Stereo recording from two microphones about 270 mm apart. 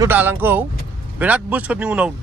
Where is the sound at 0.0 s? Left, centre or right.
Centre.